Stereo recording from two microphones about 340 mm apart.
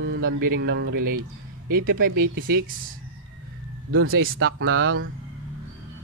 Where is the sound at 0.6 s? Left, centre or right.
Right.